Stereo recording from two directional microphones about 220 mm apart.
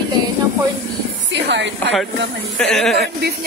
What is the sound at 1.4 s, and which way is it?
Speech, 55° right (ahead or behind).